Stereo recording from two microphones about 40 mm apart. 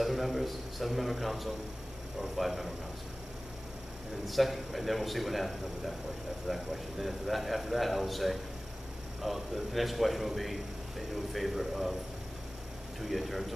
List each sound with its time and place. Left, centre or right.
0.0 s a man's voice: centre
4.3 s a man's voice: centre
13.0 s a man's voice: centre